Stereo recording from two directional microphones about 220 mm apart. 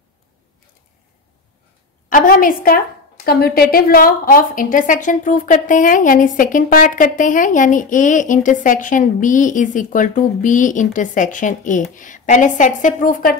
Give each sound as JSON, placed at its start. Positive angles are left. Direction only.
{"t": 2.0, "sound": "a woman's voice", "side_deg": 40}